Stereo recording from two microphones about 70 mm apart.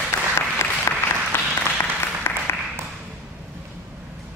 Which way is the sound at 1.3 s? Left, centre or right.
Left.